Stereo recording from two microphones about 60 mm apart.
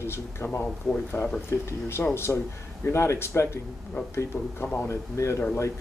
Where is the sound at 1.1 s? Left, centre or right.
Left.